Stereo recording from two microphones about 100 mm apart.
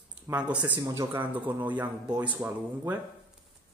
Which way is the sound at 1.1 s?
15° right (ahead or behind).